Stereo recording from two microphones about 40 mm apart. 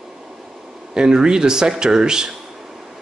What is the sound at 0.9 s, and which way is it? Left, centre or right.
Speech, centre.